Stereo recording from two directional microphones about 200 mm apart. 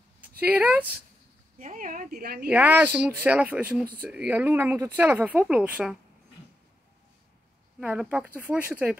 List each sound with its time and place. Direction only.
0.4 s speech: 10° right (ahead or behind)
1.6 s a woman's voice: 40° right (ahead or behind)
2.4 s speech: 10° right (ahead or behind)
7.8 s speech: 5° right (ahead or behind)